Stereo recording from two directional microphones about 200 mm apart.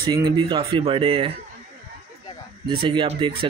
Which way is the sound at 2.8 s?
25° right (ahead or behind).